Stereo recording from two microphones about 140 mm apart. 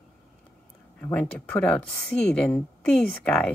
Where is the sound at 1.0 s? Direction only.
15° left (ahead or behind).